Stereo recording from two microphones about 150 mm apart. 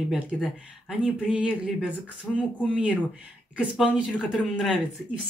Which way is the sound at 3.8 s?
5° right (ahead or behind).